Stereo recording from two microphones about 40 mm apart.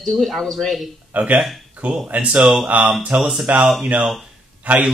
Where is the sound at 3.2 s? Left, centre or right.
Right.